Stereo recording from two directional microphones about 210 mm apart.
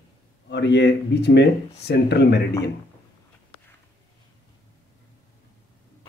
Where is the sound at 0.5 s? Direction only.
55° left (ahead or behind).